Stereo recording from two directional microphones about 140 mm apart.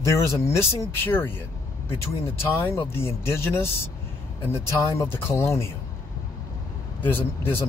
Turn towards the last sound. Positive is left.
turn(degrees=15)  # may be behind; listen again after turning